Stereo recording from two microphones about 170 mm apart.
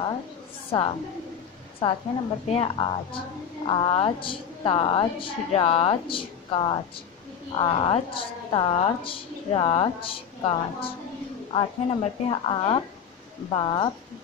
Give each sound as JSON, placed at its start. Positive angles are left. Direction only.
{"t": 0.7, "sound": "a woman's voice", "side_deg": 30}